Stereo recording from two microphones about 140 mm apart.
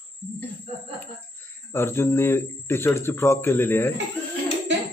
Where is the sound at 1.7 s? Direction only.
15° left (ahead or behind).